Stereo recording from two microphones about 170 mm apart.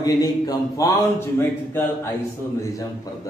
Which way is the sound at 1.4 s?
15° left (ahead or behind).